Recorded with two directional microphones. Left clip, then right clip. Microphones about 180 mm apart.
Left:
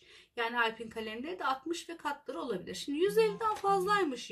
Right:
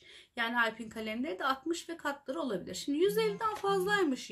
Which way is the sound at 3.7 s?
20° right (ahead or behind).